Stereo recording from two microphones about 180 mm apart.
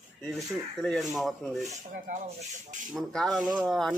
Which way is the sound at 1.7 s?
40° right (ahead or behind).